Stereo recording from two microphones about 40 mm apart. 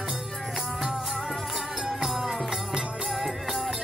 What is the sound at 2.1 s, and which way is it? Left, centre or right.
Music, centre.